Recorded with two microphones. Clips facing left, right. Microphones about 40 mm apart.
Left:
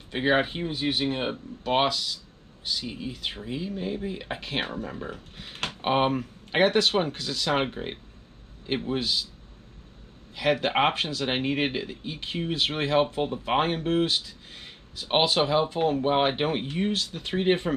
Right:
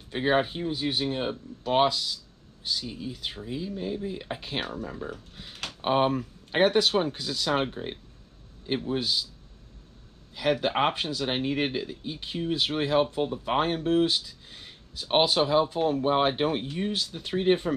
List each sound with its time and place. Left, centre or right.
0.1 s speech: left
7.1 s speech: left
10.3 s speech: left